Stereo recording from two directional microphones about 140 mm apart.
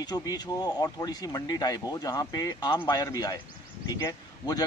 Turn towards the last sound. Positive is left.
turn(degrees=25)  # may be behind; listen again after turning